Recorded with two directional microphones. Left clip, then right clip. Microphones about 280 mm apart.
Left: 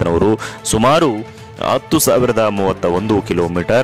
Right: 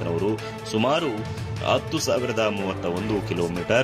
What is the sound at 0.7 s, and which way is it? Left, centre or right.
Speech, left.